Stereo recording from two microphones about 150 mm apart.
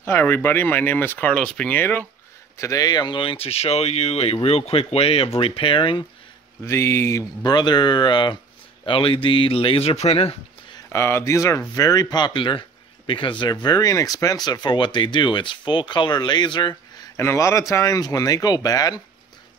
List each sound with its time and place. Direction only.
0.0 s speech: 15° left (ahead or behind); by 6.0 s 35° left (ahead or behind)
6.6 s speech: 20° left (ahead or behind); by 10.3 s 40° left (ahead or behind)
10.9 s speech: 15° left (ahead or behind)
17.2 s speech: 20° left (ahead or behind)